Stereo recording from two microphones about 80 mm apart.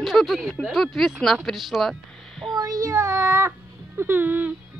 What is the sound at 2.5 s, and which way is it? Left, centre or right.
Child singing, right.